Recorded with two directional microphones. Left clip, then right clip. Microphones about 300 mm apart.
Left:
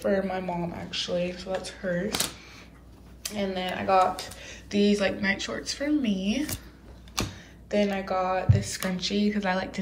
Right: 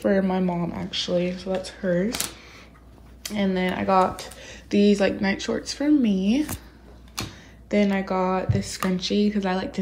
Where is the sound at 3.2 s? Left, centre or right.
Right.